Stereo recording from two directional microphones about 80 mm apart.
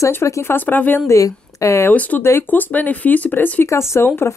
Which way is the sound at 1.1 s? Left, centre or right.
Left.